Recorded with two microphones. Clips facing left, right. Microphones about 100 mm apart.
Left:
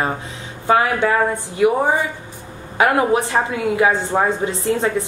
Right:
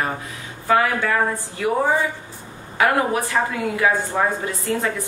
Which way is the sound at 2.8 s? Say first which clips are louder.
Left 3 dB; 20° left (ahead or behind).